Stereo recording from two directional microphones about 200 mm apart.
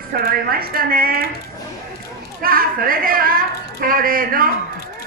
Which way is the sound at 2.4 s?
45° right (ahead or behind).